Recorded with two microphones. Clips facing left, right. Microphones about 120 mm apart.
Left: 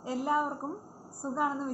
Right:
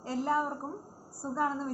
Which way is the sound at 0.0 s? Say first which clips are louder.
Left 1 dB; 10° left (ahead or behind).